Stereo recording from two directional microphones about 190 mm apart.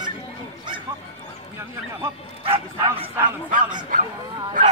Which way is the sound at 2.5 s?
30° right (ahead or behind).